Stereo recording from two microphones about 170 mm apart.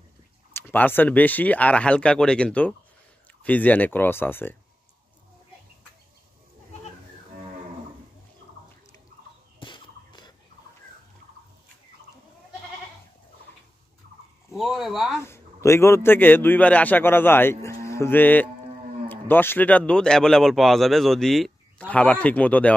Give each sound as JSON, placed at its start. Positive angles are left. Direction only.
{"t": 0.5, "sound": "speech", "side_deg": 10}
{"t": 9.6, "sound": "fowl", "side_deg": 25}
{"t": 14.5, "sound": "a sound", "side_deg": 0}
{"t": 15.2, "sound": "speech", "side_deg": 15}